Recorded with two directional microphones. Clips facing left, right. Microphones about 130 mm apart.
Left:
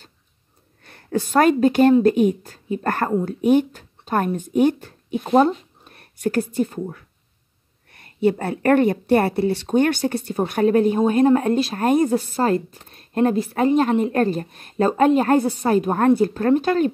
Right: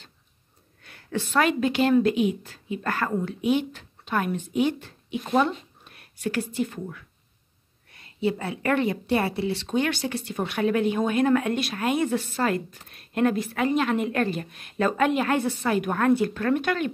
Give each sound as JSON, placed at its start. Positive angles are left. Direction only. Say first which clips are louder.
{"t": 0.8, "sound": "a woman's voice", "louder": "left 6 dB", "side_deg": 40}
{"t": 3.1, "sound": "speech", "louder": "left 8 dB", "side_deg": 35}
{"t": 7.9, "sound": "a woman's voice", "louder": "left 7 dB", "side_deg": 50}